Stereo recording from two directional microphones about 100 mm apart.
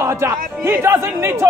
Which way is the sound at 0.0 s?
25° right (ahead or behind).